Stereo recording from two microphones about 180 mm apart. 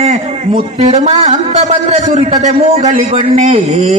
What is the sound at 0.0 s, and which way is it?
A man's voice, 40° right (ahead or behind).